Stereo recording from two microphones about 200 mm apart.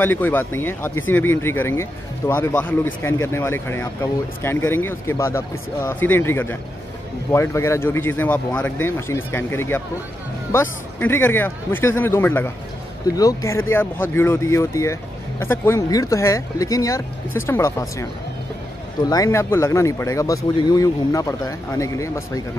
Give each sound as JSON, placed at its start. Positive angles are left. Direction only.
{"t": 0.0, "sound": "speech", "side_deg": 10}
{"t": 19.0, "sound": "speech", "side_deg": 15}